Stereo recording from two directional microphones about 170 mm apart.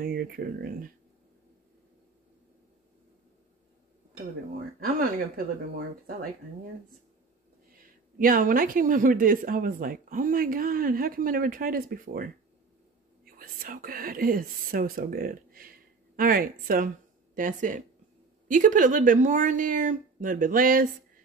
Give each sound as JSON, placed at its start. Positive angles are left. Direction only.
{"t": 0.0, "sound": "speech", "side_deg": -60}
{"t": 4.7, "sound": "speech", "side_deg": -60}
{"t": 8.2, "sound": "speech", "side_deg": -55}